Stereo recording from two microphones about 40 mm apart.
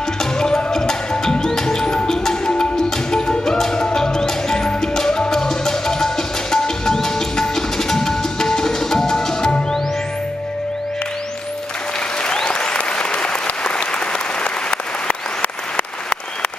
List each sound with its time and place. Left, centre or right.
0.2 s music: centre
12.3 s applause: left